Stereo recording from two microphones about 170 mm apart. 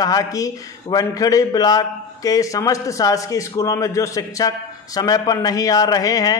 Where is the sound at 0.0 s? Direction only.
20° left (ahead or behind).